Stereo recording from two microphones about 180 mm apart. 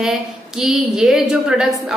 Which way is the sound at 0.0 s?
Centre (ahead or behind).